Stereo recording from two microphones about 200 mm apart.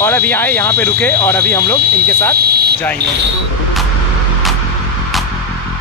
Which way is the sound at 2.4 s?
50° right (ahead or behind).